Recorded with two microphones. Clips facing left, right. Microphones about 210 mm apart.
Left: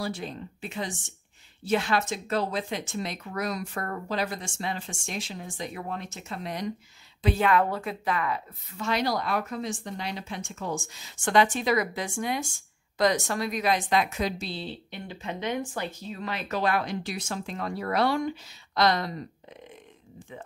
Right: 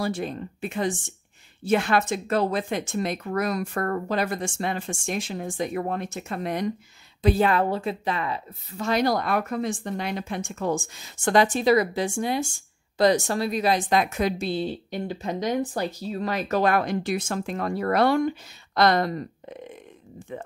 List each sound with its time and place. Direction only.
0.0 s a woman's voice: 55° right (ahead or behind)
7.2 s speech: 35° right (ahead or behind)
8.7 s a woman's voice: 45° right (ahead or behind)